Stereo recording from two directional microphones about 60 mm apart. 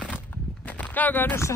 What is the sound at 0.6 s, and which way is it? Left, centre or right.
Clip-clop, left.